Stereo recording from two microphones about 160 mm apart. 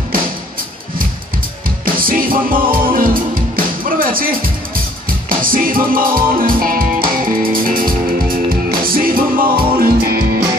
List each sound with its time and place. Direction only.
2.0 s music: 60° right (ahead or behind)